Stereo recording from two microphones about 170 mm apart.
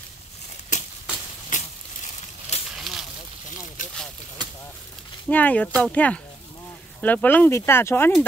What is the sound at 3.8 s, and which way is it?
Vehicle, 50° left (ahead or behind).